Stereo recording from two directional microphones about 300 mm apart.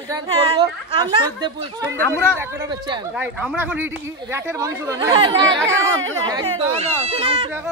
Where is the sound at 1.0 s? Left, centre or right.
Centre.